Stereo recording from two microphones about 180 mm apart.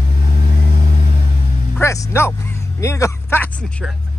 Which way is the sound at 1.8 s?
15° left (ahead or behind).